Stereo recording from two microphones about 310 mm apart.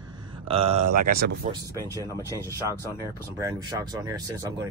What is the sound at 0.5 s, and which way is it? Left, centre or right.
Speech, centre.